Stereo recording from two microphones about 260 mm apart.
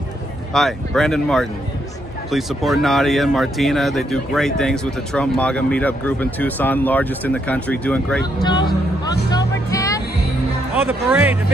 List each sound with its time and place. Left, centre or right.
0.5 s speech: centre
8.4 s speech: centre
9.3 s music: centre
10.8 s speech: centre